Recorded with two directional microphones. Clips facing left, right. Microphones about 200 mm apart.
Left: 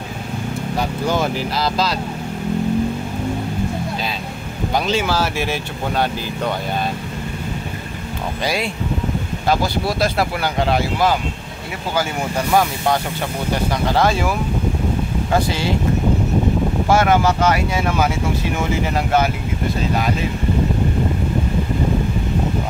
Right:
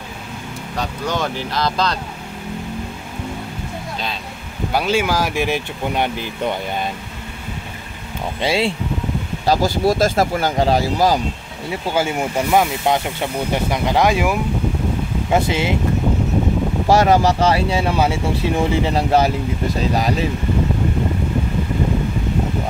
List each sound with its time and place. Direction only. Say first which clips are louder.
0.7 s speech: left 2 dB; 10° left (ahead or behind)
4.7 s speech: right 1 dB; 10° right (ahead or behind)
8.5 s speech: right 5 dB; 30° right (ahead or behind)
9.5 s speech: right 3 dB; 45° right (ahead or behind)
11.9 s speech: right 1 dB; 25° right (ahead or behind)
16.8 s speech: right 2 dB; 35° right (ahead or behind)